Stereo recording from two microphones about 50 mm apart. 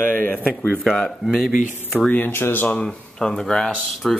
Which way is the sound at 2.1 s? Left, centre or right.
Left.